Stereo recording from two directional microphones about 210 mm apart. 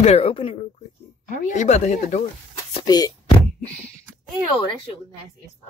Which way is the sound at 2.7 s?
20° left (ahead or behind).